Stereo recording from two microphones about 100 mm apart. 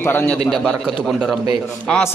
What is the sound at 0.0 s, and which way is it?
Speech, 20° left (ahead or behind).